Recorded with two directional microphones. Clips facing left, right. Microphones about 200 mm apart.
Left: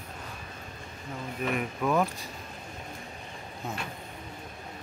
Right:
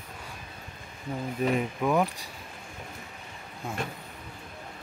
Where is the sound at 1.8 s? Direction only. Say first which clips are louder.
Even; 15° right (ahead or behind).